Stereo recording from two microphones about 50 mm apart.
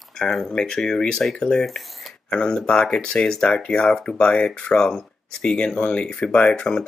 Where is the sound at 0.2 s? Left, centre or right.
Centre.